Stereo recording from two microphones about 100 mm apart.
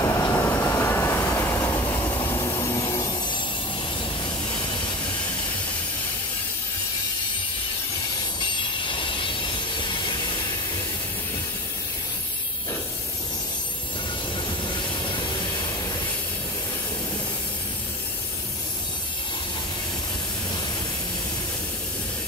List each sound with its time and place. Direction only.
0.0 s train: 30° left (ahead or behind)
2.1 s train: 35° left (ahead or behind)
4.5 s a sound: 50° left (ahead or behind)
8.4 s train: 55° left (ahead or behind)
14.7 s train: 50° left (ahead or behind)